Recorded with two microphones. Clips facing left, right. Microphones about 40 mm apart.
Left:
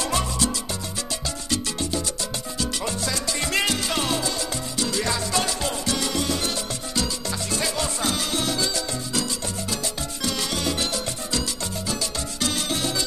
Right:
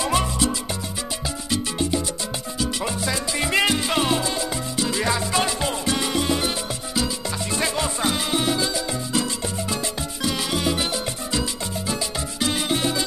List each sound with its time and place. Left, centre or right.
0.0 s music: centre
1.5 s music: centre
2.6 s salsa music: centre
4.7 s music: centre
7.5 s music: centre
10.2 s music: centre